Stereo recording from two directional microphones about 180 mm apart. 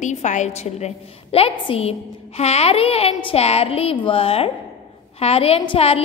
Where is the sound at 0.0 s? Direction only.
40° left (ahead or behind).